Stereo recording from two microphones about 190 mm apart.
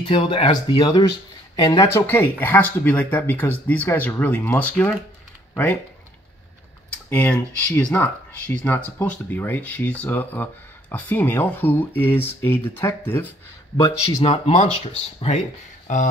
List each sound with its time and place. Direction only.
0.1 s speech: 30° left (ahead or behind); by 5.8 s 10° left (ahead or behind)
7.1 s speech: 10° left (ahead or behind)
14.2 s speech: 35° left (ahead or behind)